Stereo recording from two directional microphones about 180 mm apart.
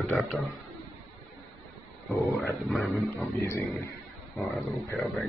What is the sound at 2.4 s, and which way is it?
Dog, centre (ahead or behind).